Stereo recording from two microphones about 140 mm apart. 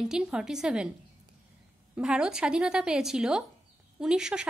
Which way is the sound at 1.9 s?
5° right (ahead or behind).